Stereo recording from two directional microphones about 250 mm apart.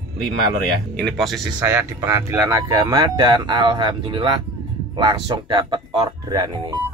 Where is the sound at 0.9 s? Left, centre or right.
Centre.